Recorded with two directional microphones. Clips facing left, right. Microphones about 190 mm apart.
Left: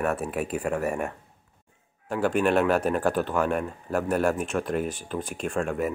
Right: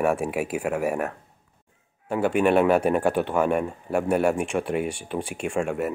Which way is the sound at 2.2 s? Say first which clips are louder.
Right 3 dB; 10° right (ahead or behind).